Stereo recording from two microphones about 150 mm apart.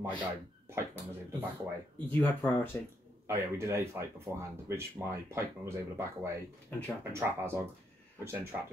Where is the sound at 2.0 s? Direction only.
10° left (ahead or behind).